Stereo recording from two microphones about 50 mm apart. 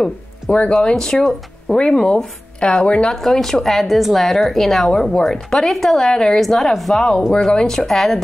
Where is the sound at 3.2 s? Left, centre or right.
Centre.